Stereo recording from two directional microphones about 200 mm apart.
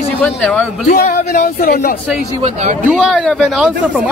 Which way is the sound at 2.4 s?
35° right (ahead or behind).